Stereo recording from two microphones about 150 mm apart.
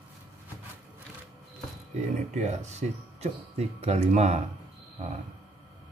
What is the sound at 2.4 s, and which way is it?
Speech, 50° right (ahead or behind).